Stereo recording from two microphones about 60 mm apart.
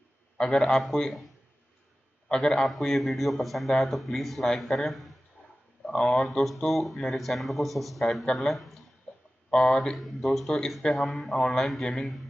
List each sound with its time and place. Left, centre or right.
0.4 s a man's voice: centre
9.1 s a sound: centre
9.5 s a man's voice: centre